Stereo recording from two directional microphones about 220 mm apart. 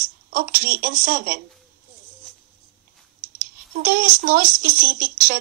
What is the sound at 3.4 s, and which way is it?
Speech, 40° right (ahead or behind).